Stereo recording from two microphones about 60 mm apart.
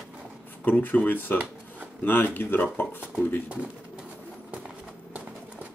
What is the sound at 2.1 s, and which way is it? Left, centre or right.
Speech, left.